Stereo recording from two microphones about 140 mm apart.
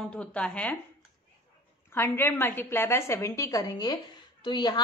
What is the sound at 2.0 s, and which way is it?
A woman's voice, 15° left (ahead or behind).